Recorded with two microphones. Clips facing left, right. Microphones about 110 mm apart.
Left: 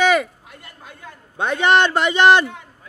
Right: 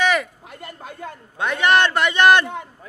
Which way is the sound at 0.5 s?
45° right (ahead or behind).